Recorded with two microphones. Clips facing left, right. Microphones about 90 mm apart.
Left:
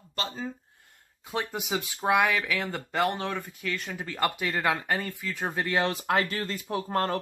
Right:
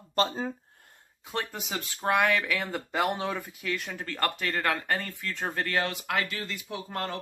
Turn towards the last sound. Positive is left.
turn(degrees=40)  # may be behind; listen again after turning